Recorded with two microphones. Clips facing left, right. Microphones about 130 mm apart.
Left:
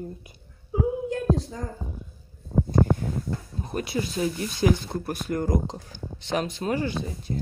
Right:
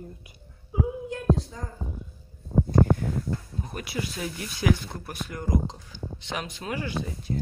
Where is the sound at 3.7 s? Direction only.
30° left (ahead or behind).